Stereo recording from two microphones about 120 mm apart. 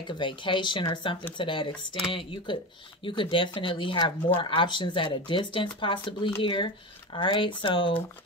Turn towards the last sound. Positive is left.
turn(degrees=45)  # may be behind; listen again after turning